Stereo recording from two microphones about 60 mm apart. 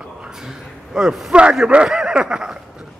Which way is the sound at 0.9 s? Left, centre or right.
Centre.